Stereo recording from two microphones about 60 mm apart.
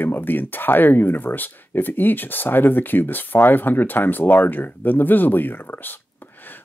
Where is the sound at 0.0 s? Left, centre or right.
Left.